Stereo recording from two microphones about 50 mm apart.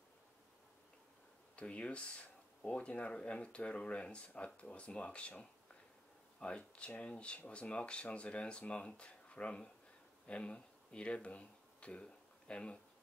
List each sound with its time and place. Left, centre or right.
1.6 s speech: left
6.4 s speech: left